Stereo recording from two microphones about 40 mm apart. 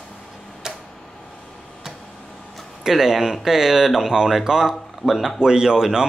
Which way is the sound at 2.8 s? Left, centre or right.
Centre.